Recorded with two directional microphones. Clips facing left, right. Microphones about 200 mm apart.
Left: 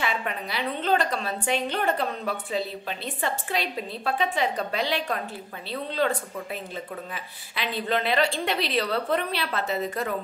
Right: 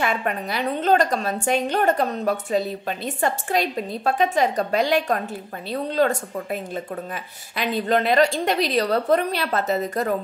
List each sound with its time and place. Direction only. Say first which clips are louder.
0.0 s a woman's voice: right 5 dB; 50° right (ahead or behind)